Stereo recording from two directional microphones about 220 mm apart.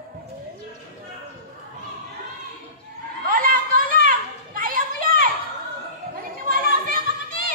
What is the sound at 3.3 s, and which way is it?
Children playing, 40° right (ahead or behind).